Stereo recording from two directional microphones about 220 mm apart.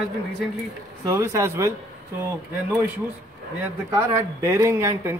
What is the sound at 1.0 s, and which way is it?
Speech, 15° right (ahead or behind).